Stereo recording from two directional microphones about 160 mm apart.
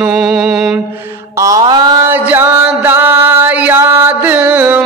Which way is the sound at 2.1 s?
10° right (ahead or behind).